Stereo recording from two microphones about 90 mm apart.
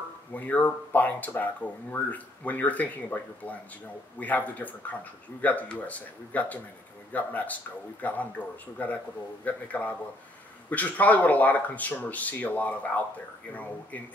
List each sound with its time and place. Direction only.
0.3 s a man's voice: 15° left (ahead or behind)